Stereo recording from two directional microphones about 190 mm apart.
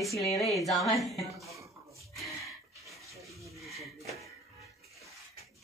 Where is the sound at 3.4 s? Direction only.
Centre (ahead or behind).